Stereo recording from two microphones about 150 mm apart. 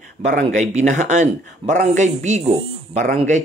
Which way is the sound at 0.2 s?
55° right (ahead or behind).